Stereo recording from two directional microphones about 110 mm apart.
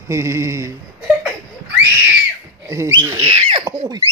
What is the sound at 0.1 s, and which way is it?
Speech, 25° right (ahead or behind).